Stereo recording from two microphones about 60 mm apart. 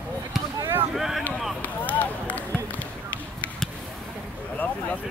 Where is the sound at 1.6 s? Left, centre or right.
Left.